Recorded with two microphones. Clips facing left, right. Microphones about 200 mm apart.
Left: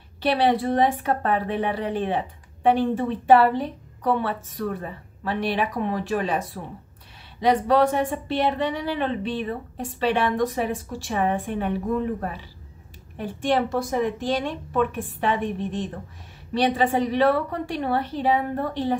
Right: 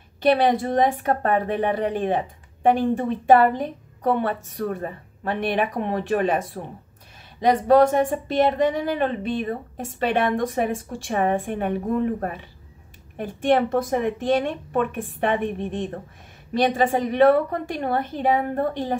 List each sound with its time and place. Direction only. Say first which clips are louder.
0.2 s a woman's voice: right 2 dB; 50° right (ahead or behind)